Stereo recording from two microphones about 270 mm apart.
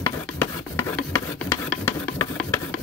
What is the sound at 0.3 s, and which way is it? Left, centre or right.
Rub, centre.